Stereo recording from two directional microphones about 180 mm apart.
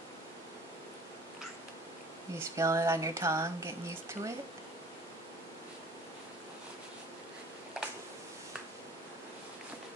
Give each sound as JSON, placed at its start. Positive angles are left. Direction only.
{"t": 2.3, "sound": "speech", "side_deg": -15}